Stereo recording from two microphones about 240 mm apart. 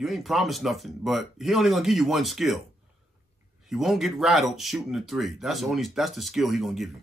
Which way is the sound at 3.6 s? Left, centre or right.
Centre.